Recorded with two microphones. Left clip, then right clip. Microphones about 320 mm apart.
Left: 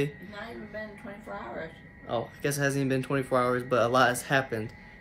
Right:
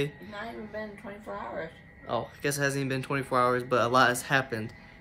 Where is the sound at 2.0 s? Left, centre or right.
Centre.